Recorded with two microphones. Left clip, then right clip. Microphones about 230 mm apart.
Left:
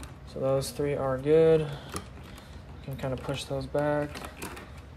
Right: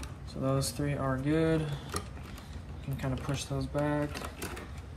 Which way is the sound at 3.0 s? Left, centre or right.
Left.